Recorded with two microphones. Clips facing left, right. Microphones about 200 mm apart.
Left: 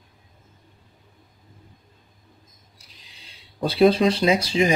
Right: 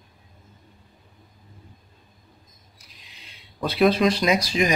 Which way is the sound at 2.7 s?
30° left (ahead or behind).